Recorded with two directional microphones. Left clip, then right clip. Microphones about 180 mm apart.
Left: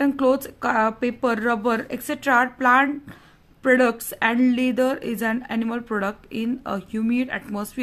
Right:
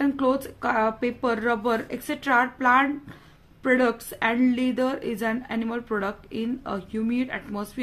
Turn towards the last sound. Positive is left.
turn(degrees=30)  # may be behind; listen again after turning